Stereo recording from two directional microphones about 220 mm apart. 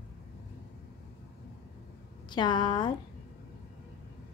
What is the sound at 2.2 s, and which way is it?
Speech, 20° left (ahead or behind).